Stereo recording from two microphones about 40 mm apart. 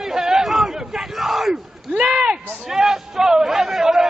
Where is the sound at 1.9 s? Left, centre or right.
Right.